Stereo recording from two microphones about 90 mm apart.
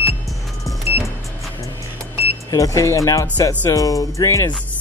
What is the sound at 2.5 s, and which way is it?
Speech, 40° left (ahead or behind).